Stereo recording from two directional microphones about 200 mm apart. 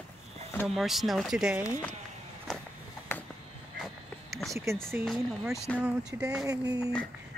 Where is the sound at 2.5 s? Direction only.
Centre (ahead or behind).